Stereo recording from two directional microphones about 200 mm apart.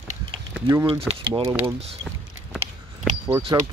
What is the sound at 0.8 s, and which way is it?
Speech, 30° right (ahead or behind).